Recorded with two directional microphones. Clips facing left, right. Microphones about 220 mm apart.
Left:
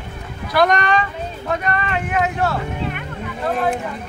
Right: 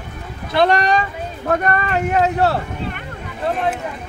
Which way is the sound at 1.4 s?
50° right (ahead or behind).